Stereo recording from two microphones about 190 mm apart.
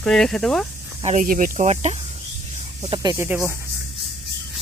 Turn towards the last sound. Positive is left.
turn(degrees=-15)  # may be behind; listen again after turning